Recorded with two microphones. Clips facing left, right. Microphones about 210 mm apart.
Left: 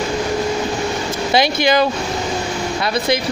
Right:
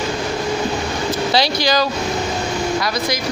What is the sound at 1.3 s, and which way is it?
Speech, 20° left (ahead or behind).